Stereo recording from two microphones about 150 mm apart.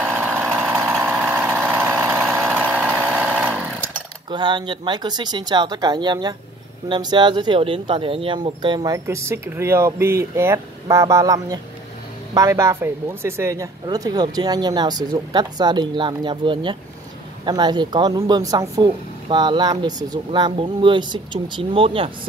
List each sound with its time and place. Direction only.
0.1 s a sound: 15° right (ahead or behind)
1.3 s vehicle: 15° right (ahead or behind)
4.3 s speech: 30° right (ahead or behind)
18.9 s speech: 35° right (ahead or behind)